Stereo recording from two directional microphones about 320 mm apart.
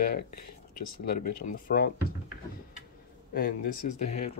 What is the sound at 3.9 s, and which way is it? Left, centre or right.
Speech, left.